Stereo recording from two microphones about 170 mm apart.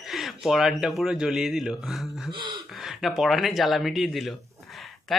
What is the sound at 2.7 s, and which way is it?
Speech, centre (ahead or behind).